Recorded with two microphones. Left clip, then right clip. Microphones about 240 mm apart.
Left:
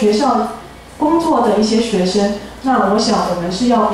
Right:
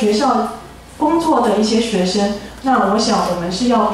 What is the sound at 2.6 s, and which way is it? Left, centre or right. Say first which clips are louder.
A woman's voice: left 1 dB; centre.